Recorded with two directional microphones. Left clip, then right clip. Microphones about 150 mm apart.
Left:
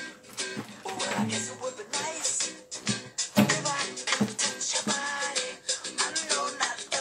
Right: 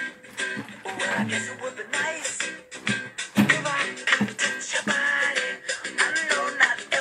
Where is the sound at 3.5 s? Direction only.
20° right (ahead or behind).